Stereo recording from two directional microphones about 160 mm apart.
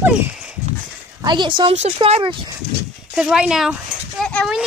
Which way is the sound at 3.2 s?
5° right (ahead or behind).